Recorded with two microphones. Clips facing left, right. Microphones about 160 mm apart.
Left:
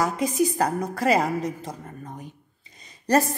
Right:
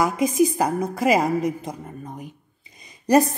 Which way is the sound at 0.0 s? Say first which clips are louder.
Right 4 dB; 15° right (ahead or behind).